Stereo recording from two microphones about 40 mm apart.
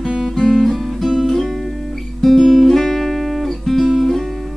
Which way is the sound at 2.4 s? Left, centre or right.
Centre.